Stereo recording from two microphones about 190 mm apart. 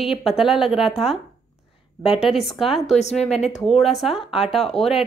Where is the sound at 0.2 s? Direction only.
Centre (ahead or behind).